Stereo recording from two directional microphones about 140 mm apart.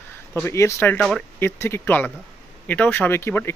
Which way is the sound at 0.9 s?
Centre (ahead or behind).